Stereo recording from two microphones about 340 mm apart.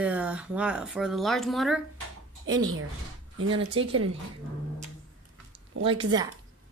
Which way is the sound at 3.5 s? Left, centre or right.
Centre.